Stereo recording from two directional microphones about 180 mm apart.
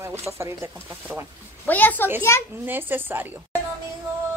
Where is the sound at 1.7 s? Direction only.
10° left (ahead or behind).